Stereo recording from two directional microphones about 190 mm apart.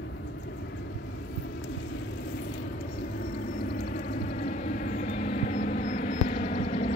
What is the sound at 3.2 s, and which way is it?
Vehicle, 50° left (ahead or behind).